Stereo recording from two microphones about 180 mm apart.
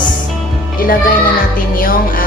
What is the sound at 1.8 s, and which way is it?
Music, 50° left (ahead or behind).